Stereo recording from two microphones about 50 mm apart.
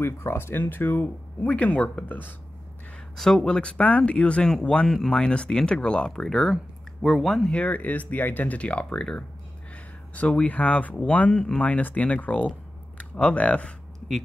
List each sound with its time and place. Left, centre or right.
0.0 s speech: left
1.4 s speech: left
3.2 s speech: centre
4.8 s speech: centre
5.1 s speech: centre
6.1 s speech: centre
7.5 s speech: left
8.5 s speech: left